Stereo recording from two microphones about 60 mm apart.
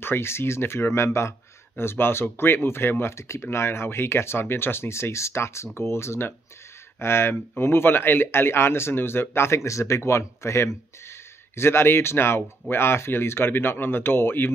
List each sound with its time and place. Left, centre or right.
0.0 s speech: left